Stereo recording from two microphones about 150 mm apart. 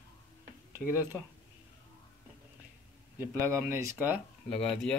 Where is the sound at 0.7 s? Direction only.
15° right (ahead or behind).